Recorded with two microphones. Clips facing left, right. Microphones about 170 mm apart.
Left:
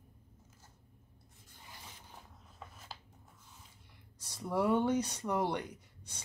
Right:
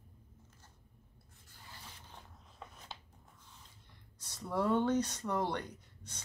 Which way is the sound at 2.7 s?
5° left (ahead or behind).